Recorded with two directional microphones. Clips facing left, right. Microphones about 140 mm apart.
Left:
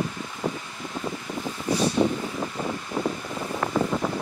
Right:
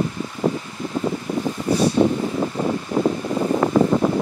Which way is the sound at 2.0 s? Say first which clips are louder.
Right 5 dB; 45° right (ahead or behind).